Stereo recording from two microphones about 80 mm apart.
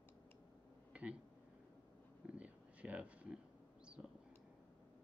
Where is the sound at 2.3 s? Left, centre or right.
Centre.